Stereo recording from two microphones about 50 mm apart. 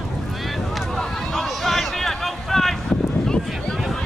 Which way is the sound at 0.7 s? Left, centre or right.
Centre.